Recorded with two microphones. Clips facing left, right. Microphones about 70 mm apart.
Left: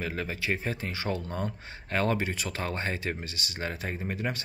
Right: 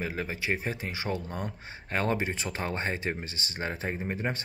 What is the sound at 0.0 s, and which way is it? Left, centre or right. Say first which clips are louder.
Speech: even; centre.